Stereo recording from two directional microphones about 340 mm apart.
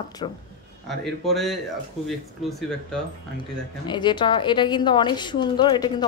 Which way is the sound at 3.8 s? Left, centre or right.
Centre.